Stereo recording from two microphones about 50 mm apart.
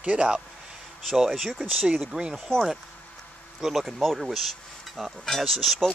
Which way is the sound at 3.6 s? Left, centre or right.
Centre.